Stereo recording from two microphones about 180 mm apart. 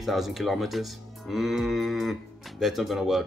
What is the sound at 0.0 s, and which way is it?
Speech, centre (ahead or behind).